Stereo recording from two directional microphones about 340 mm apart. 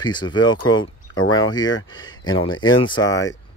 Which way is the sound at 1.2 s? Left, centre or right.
Left.